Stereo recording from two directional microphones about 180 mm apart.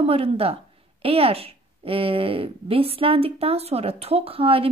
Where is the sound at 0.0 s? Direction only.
35° right (ahead or behind).